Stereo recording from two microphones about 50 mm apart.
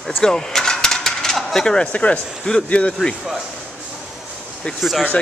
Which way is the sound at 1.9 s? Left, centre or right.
Left.